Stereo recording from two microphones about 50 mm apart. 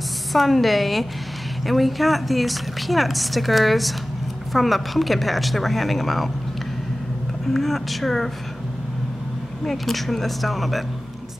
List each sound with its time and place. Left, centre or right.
0.3 s a woman's voice: centre
7.5 s a woman's voice: centre
9.7 s a woman's voice: centre